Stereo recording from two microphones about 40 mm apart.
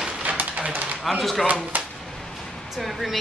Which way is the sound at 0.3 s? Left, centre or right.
Right.